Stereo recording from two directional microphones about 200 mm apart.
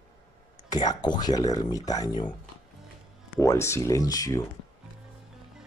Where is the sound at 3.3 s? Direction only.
15° left (ahead or behind).